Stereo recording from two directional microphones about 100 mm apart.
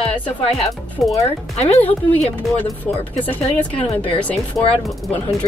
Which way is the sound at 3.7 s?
65° left (ahead or behind).